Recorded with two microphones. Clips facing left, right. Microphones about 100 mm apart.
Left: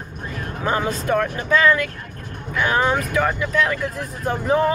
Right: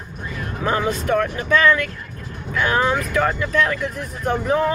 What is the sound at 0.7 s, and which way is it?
Speech, 25° left (ahead or behind).